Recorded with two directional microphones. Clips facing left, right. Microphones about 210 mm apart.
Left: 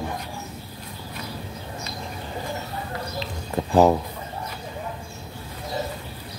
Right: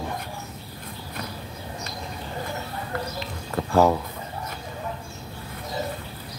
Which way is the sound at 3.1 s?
15° left (ahead or behind).